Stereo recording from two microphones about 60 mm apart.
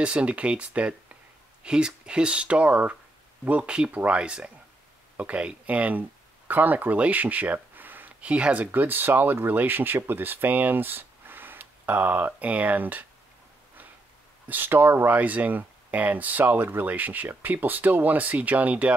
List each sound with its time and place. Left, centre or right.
0.0 s speech: right
14.5 s speech: right